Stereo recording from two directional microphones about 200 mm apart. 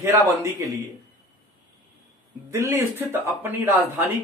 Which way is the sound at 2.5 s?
15° right (ahead or behind).